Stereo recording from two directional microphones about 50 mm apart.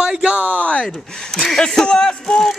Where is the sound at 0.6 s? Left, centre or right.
Left.